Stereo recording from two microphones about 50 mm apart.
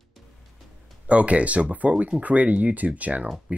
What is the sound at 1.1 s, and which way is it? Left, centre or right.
Speech, right.